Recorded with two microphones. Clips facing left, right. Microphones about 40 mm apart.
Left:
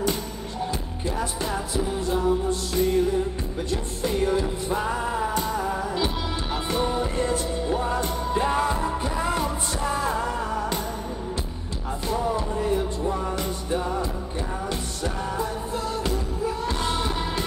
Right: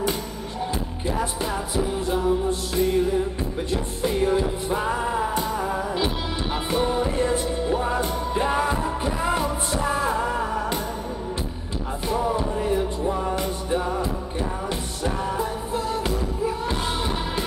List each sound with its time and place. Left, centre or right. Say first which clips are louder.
1.0 s music: right 2 dB; centre
12.1 s music: right 2 dB; centre